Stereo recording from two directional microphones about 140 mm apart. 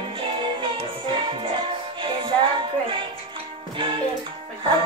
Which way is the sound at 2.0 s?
40° right (ahead or behind).